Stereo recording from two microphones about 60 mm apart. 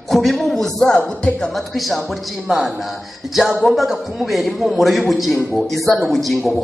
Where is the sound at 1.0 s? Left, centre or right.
Centre.